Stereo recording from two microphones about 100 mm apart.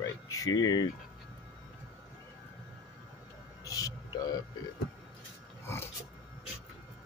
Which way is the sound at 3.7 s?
35° left (ahead or behind).